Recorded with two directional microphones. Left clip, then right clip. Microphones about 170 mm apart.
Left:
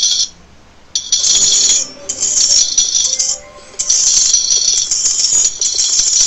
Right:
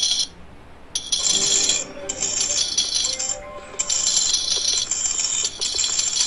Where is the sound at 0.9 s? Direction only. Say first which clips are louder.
Left 8 dB; 40° right (ahead or behind).